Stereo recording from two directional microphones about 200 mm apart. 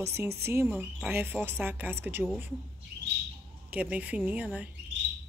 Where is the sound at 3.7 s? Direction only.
10° right (ahead or behind).